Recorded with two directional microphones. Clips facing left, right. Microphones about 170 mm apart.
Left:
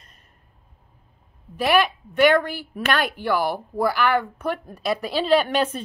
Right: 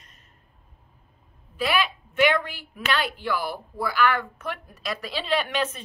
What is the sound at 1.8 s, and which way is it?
A woman's voice, 45° left (ahead or behind).